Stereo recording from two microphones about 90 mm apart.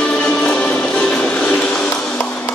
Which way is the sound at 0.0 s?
10° left (ahead or behind).